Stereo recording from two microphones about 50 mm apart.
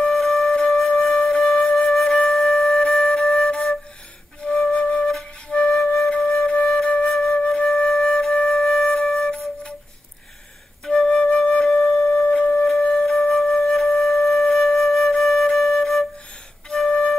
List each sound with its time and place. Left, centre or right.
0.1 s wind instrument: centre
2.3 s flute: centre
7.2 s flute: centre
9.0 s wind instrument: centre
10.9 s flute: centre
11.6 s wind instrument: centre
12.1 s wind instrument: left
12.6 s wind instrument: centre
14.5 s flute: centre